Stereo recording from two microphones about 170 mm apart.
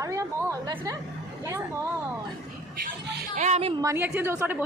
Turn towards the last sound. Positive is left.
turn(degrees=-10)  # may be behind; listen again after turning